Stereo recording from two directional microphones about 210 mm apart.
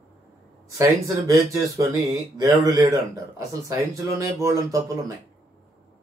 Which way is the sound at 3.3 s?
15° right (ahead or behind).